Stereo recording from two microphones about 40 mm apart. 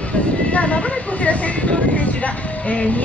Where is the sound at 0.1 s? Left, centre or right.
Left.